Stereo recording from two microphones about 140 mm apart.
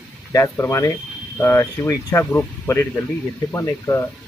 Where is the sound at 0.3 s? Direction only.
20° left (ahead or behind).